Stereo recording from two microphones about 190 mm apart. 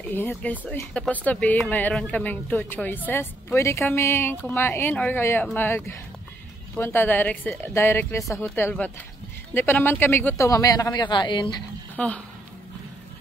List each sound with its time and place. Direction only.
0.1 s speech: 10° left (ahead or behind)
12.0 s speech: 5° left (ahead or behind)